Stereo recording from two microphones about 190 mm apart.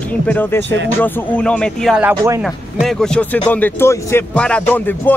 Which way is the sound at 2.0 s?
15° right (ahead or behind).